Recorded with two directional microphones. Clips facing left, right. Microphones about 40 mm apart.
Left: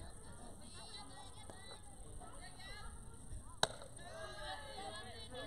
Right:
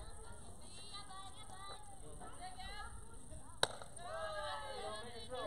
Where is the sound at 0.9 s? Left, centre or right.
Right.